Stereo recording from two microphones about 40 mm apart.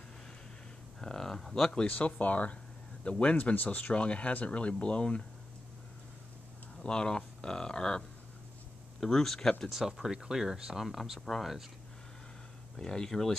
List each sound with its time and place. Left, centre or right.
1.0 s speech: centre
1.9 s speech: left
3.5 s speech: left
6.8 s speech: left
9.0 s speech: centre
9.7 s speech: centre
10.9 s speech: centre
12.7 s speech: centre